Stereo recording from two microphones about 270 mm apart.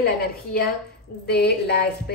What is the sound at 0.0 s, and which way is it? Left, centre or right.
A woman's voice, left.